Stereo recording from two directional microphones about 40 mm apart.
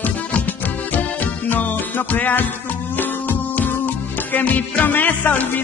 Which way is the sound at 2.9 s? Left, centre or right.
Left.